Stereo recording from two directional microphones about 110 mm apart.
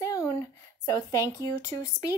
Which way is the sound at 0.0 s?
30° left (ahead or behind).